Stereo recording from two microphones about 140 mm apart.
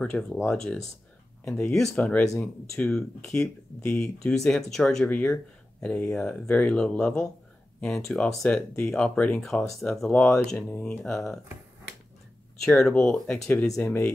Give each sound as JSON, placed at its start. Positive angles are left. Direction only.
{"t": 0.0, "sound": "speech", "side_deg": 5}
{"t": 12.6, "sound": "speech", "side_deg": 5}